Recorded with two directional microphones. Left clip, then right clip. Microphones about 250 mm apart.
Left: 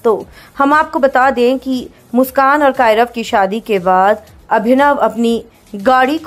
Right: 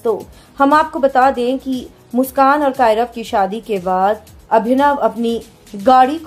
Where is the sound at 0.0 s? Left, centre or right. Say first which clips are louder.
Left 5 dB; centre.